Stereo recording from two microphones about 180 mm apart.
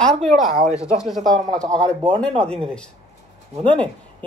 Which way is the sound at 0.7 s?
15° left (ahead or behind).